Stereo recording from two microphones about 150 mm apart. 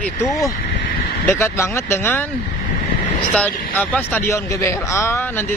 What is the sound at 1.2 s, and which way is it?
A man's voice, 15° left (ahead or behind).